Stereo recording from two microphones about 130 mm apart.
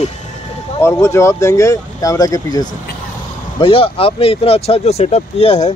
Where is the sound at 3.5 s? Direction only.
40° left (ahead or behind).